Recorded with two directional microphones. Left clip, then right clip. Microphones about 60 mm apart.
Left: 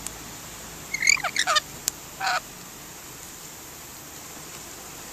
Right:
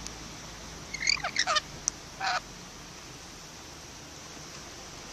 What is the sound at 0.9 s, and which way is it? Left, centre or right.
Frog, centre.